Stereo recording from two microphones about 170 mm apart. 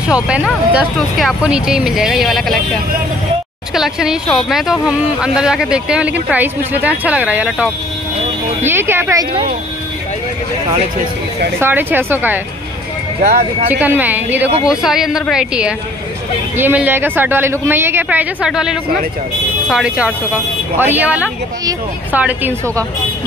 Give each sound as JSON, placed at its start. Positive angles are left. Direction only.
{"t": 0.1, "sound": "speech", "side_deg": -5}
{"t": 3.7, "sound": "speech", "side_deg": -5}
{"t": 9.3, "sound": "speech", "side_deg": -30}
{"t": 11.6, "sound": "speech", "side_deg": -10}
{"t": 13.7, "sound": "speech", "side_deg": -10}